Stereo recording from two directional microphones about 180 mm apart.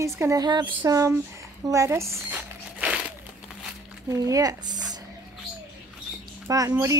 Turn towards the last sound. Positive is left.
turn(degrees=-20)  # may be behind; listen again after turning